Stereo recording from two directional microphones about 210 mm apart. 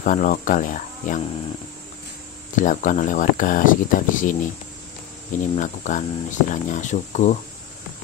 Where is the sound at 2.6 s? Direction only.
40° left (ahead or behind).